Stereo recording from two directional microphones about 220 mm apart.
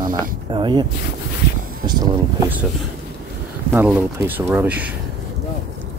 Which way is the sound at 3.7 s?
10° right (ahead or behind).